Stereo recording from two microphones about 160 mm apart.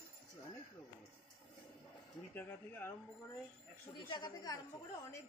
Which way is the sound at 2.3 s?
15° left (ahead or behind).